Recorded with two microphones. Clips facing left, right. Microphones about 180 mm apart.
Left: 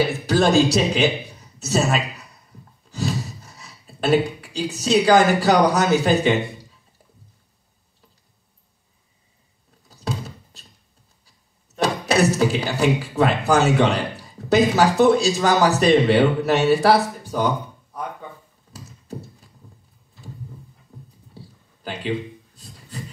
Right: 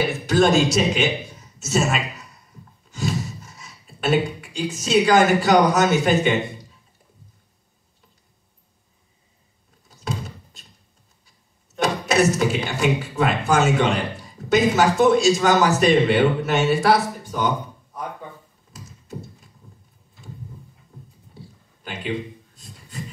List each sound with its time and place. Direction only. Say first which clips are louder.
0.0 s a man's voice: even; 35° left (ahead or behind)
2.9 s gasp: even; 35° left (ahead or behind)
9.8 s door: left 1 dB; 35° left (ahead or behind)
11.8 s speech: even; 35° left (ahead or behind)
18.7 s a sound: left 2 dB; 35° left (ahead or behind)
22.6 s a sound: even; 35° left (ahead or behind)